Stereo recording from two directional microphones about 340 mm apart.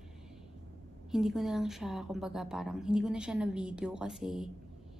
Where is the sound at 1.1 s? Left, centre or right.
Centre.